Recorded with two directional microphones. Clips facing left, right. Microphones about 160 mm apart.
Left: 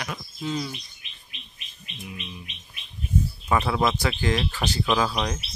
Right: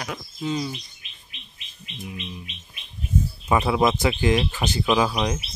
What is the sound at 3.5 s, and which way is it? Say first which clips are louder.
Speech: right 3 dB; 15° right (ahead or behind).